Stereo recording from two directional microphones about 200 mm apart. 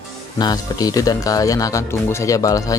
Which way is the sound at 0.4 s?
20° left (ahead or behind).